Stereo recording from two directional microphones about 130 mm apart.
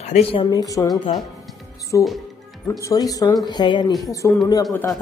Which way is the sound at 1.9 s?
25° left (ahead or behind).